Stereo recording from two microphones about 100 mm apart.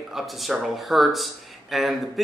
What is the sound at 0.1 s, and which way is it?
A man's voice, centre (ahead or behind).